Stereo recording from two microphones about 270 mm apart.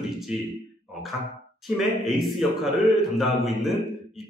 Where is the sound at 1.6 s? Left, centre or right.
Centre.